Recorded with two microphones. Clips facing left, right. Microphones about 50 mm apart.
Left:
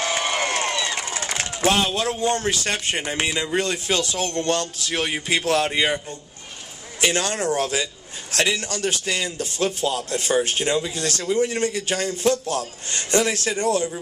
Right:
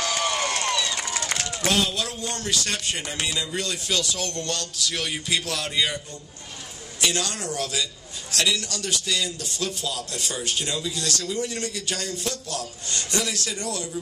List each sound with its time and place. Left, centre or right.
0.0 s a man's voice: left
7.0 s a man's voice: left